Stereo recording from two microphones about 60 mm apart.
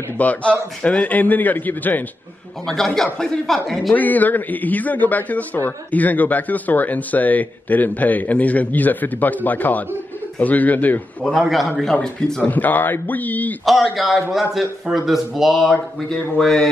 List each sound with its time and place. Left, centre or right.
0.2 s speech: left
2.6 s speech: centre
3.9 s speech: left
11.4 s speech: centre
11.8 s speech: centre
12.4 s speech: left
13.7 s speech: centre
16.3 s speech: centre